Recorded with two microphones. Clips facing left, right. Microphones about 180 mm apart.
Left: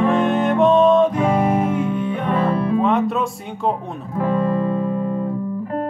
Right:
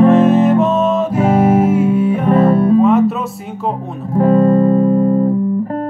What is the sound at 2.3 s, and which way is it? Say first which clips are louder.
Music: right 8 dB; 45° right (ahead or behind).